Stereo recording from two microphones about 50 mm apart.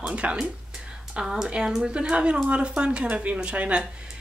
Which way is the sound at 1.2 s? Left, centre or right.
Centre.